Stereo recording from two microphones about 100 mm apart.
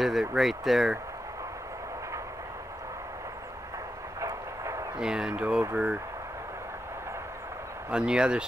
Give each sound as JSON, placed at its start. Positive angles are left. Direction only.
{"t": 0.0, "sound": "speech", "side_deg": -5}
{"t": 4.2, "sound": "vehicle", "side_deg": -30}
{"t": 4.9, "sound": "speech", "side_deg": -10}
{"t": 7.9, "sound": "speech", "side_deg": -10}